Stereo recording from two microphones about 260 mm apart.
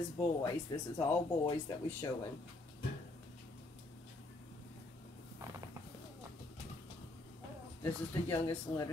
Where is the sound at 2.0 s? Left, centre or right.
Centre.